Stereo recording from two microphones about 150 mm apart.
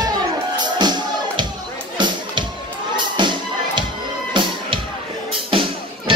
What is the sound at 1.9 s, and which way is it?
Music, 30° right (ahead or behind).